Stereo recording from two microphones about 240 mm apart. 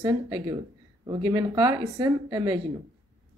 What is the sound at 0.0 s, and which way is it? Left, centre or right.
A woman's voice, centre.